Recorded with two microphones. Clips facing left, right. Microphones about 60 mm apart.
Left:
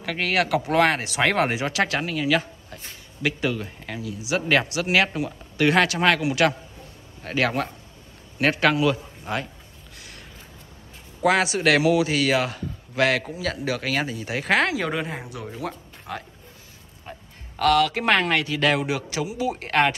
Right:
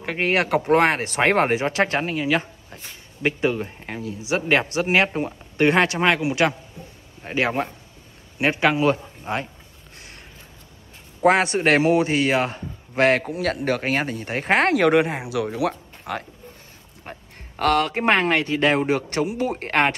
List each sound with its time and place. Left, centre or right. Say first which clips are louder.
0.0 s a man's voice: right 2 dB; right
9.9 s a sound: even; right
11.2 s speech: right 2 dB; right
13.3 s speech: right 4 dB; right
14.7 s speech: right 9 dB; right
15.4 s speech: right 8 dB; right
17.0 s speech: right 2 dB; right
18.9 s speech: right 5 dB; right